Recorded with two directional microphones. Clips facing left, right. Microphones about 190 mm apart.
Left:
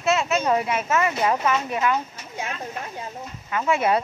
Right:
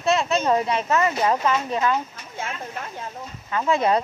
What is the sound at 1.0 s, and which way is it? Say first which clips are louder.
Speech: even; 30° right (ahead or behind).